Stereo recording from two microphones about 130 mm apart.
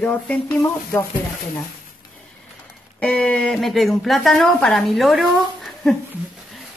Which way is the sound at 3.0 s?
5° left (ahead or behind).